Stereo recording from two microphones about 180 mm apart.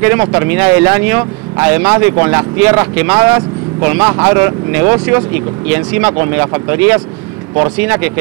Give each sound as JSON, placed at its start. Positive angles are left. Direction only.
{"t": 0.0, "sound": "speech", "side_deg": -10}